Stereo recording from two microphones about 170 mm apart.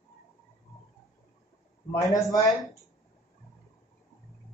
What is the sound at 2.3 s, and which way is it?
Speech, 20° left (ahead or behind).